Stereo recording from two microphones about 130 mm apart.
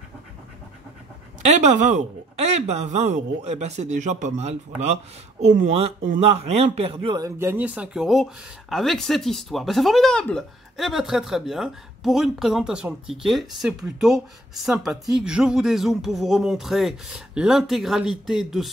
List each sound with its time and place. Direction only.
1.4 s speech: 60° right (ahead or behind)
7.2 s speech: 20° right (ahead or behind); by 18.7 s 5° right (ahead or behind)